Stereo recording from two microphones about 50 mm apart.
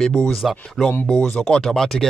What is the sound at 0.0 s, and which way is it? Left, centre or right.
Speech, centre.